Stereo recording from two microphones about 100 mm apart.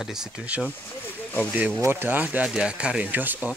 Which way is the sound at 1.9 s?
20° right (ahead or behind).